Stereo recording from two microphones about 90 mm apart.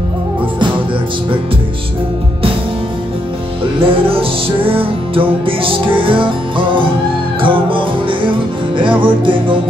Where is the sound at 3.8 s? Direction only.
90° right; by 9.6 s 70° right (ahead or behind).